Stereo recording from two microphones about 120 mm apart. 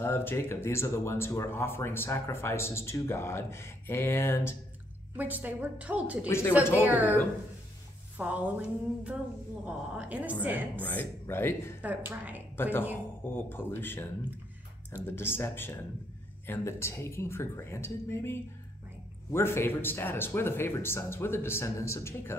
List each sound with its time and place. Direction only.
0.0 s speech: 20° left (ahead or behind)
5.1 s a woman's voice: 15° right (ahead or behind)
6.2 s speech: 20° left (ahead or behind)
6.7 s a woman's voice: 15° right (ahead or behind)
8.2 s a woman's voice: 15° right (ahead or behind)
10.8 s speech: 15° left (ahead or behind)
11.8 s a woman's voice: 15° right (ahead or behind)
12.5 s speech: 20° left (ahead or behind)
15.0 s speech: 20° left (ahead or behind)